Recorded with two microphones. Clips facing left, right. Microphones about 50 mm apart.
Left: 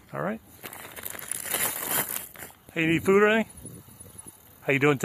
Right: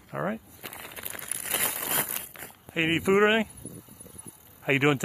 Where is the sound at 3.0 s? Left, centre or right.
Centre.